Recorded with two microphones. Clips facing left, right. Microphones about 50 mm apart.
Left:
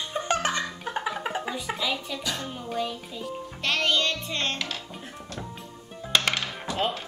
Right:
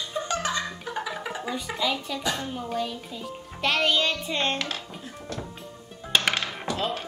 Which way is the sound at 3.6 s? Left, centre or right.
Centre.